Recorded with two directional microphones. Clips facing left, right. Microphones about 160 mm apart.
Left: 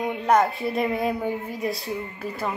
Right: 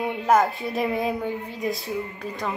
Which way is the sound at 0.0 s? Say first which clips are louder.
Even; centre (ahead or behind).